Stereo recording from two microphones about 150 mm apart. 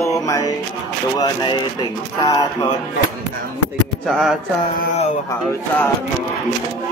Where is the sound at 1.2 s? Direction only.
30° left (ahead or behind).